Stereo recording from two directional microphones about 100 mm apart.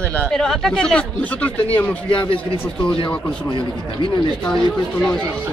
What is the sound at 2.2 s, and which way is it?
Speech, 55° left (ahead or behind).